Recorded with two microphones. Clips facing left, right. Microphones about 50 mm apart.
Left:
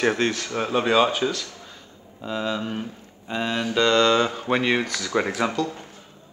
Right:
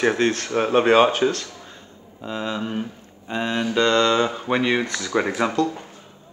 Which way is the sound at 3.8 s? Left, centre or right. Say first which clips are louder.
Even; right.